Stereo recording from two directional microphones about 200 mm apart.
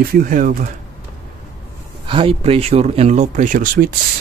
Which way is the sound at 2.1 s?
25° right (ahead or behind).